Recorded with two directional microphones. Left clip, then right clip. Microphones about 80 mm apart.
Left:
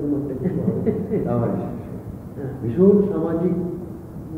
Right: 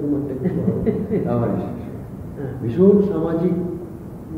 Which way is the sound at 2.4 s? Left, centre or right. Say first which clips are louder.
Right 1 dB; left.